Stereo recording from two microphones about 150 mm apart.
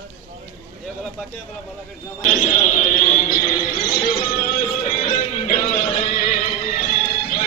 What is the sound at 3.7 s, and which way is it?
Music, 70° left (ahead or behind).